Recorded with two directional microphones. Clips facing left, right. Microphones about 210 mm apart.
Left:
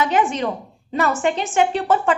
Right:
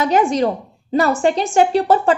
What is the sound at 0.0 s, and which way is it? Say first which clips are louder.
A woman's voice: right 4 dB; 40° right (ahead or behind).